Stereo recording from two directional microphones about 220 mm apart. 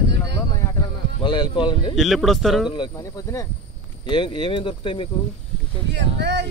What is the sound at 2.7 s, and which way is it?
Speech, 20° left (ahead or behind).